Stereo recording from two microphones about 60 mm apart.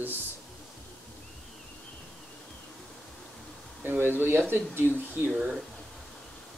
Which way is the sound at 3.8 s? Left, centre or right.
Right.